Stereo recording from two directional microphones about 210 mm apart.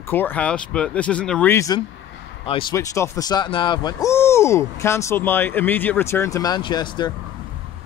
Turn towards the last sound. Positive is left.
turn(degrees=20)  # may be behind; listen again after turning